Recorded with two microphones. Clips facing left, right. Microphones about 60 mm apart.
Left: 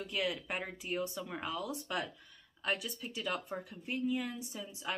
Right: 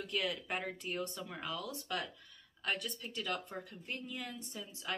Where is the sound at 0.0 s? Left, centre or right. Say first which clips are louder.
Left 1 dB; centre.